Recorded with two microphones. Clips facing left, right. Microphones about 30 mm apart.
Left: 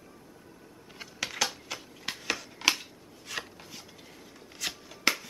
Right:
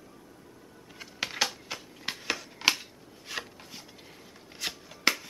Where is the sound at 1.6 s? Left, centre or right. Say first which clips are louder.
Right 1 dB; centre.